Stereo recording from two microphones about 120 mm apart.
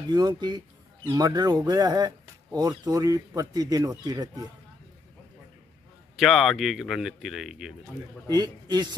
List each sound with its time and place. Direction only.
0.1 s speech: 35° right (ahead or behind)
6.1 s speech: centre (ahead or behind)
8.3 s speech: 35° right (ahead or behind)